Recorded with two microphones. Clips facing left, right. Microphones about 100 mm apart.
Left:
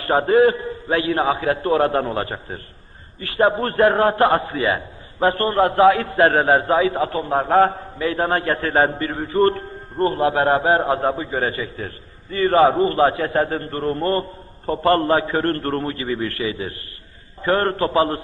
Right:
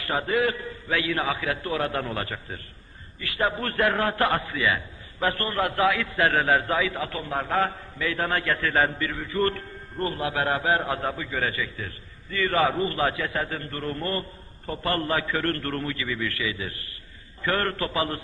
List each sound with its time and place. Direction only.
0.0 s a man's voice: 40° left (ahead or behind)
5.3 s a man's voice: 25° left (ahead or behind)
5.6 s a man's voice: 40° left (ahead or behind)
7.7 s a man's voice: 30° left (ahead or behind)
9.4 s a man's voice: 30° left (ahead or behind)
11.1 s a man's voice: 30° left (ahead or behind)